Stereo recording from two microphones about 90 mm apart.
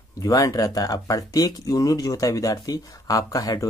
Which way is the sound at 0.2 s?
40° left (ahead or behind).